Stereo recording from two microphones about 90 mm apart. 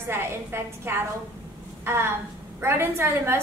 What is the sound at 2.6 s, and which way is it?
Speech, 25° right (ahead or behind).